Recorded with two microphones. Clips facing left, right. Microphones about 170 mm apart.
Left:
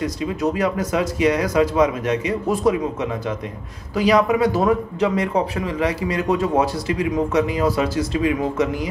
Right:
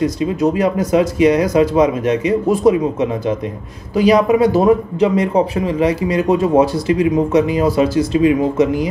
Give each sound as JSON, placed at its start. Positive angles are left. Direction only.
{"t": 0.0, "sound": "speech", "side_deg": -25}